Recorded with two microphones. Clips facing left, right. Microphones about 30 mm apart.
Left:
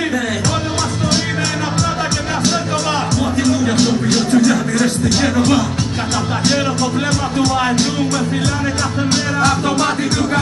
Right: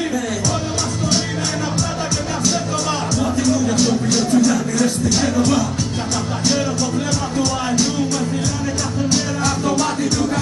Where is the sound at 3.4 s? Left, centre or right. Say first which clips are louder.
Left 2 dB; left.